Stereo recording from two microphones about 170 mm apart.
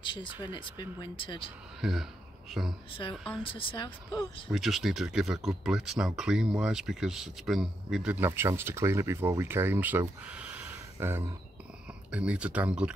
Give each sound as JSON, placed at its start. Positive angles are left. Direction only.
{"t": 0.0, "sound": "speech", "side_deg": 30}
{"t": 1.8, "sound": "speech", "side_deg": 0}
{"t": 2.9, "sound": "speech", "side_deg": 30}
{"t": 4.5, "sound": "speech", "side_deg": 0}